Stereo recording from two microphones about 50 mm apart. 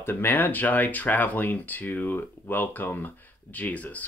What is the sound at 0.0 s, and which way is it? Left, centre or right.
Speech, left.